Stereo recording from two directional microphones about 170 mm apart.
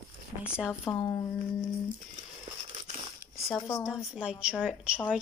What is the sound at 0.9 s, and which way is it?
Speech, 10° left (ahead or behind).